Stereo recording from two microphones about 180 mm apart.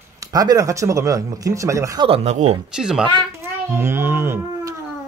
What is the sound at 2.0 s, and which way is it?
Speech, 35° right (ahead or behind).